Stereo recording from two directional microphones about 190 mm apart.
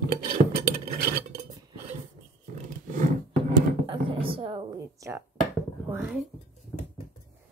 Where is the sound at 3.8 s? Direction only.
30° right (ahead or behind); by 6.3 s 5° right (ahead or behind).